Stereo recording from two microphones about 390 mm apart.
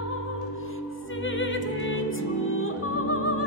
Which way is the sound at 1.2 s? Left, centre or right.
Left.